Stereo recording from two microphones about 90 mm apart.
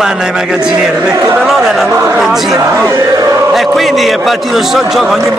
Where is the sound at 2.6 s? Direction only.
30° right (ahead or behind).